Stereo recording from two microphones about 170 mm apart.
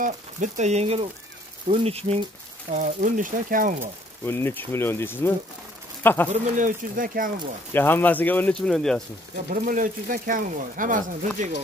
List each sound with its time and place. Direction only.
0.0 s speech: 45° right (ahead or behind)
2.7 s speech: 50° right (ahead or behind)
4.3 s speech: 15° left (ahead or behind)
6.3 s speech: 50° right (ahead or behind)
7.7 s speech: 10° left (ahead or behind)
9.5 s speech: 50° right (ahead or behind)